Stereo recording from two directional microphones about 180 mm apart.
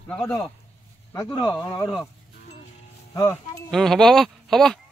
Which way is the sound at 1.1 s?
20° left (ahead or behind).